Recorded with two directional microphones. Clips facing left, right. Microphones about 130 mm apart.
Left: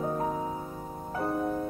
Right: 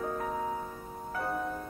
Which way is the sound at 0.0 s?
25° left (ahead or behind).